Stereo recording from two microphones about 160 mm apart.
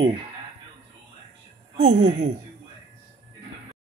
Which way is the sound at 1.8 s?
45° right (ahead or behind).